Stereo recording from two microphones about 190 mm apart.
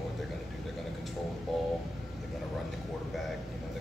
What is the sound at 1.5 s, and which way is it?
Speech, centre (ahead or behind).